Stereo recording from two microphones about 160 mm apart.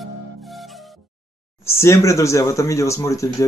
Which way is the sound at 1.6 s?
15° left (ahead or behind).